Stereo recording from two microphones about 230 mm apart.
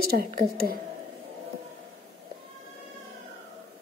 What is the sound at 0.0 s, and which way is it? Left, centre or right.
Speech, right.